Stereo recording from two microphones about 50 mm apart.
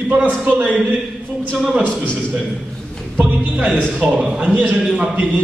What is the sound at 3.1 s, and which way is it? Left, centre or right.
A man's voice, right.